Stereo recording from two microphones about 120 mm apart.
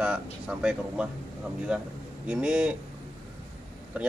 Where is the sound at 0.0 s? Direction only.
5° right (ahead or behind).